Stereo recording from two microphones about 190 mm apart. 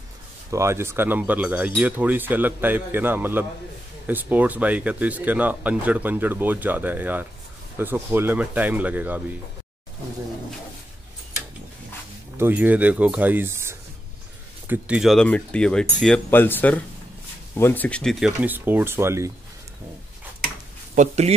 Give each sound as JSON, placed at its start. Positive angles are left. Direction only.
{"t": 0.5, "sound": "speech", "side_deg": -15}
{"t": 12.4, "sound": "speech", "side_deg": -10}
{"t": 18.4, "sound": "speech", "side_deg": -10}
{"t": 20.9, "sound": "speech", "side_deg": -40}